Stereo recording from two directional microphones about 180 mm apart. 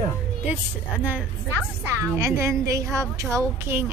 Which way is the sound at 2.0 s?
15° right (ahead or behind).